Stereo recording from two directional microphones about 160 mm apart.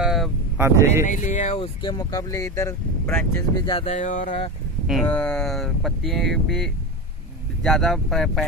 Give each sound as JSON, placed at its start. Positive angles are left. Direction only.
{"t": 0.0, "sound": "vehicle", "side_deg": 0}
{"t": 0.6, "sound": "a man's voice", "side_deg": -15}
{"t": 1.0, "sound": "speech", "side_deg": 50}
{"t": 1.8, "sound": "speech", "side_deg": 25}
{"t": 3.5, "sound": "speech", "side_deg": 30}
{"t": 5.0, "sound": "speech", "side_deg": 10}